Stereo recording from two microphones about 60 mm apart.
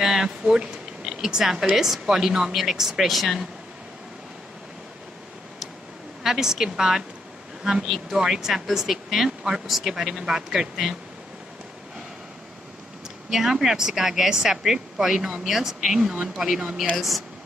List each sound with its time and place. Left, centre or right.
0.0 s speech: centre
6.2 s speech: centre
13.3 s speech: centre
16.0 s speech: centre
16.3 s speech: centre